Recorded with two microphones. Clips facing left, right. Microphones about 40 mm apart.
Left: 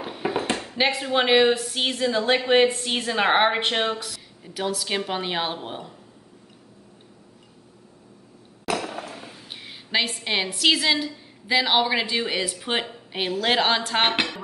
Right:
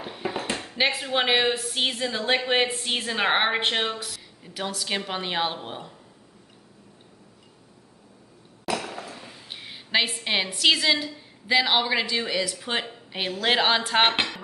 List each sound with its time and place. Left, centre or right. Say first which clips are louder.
0.0 s dishes: left 4 dB; centre
0.6 s a woman's voice: left 2 dB; centre
8.8 s a sound: left 3 dB; left
9.5 s a woman's voice: right 1 dB; centre
12.1 s a woman's voice: left 1 dB; left; by 14.4 s centre